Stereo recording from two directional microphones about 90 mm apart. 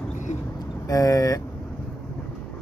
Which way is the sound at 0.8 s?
40° left (ahead or behind).